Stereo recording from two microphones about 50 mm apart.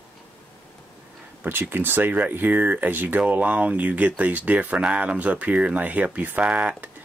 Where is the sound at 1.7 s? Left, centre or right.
Right.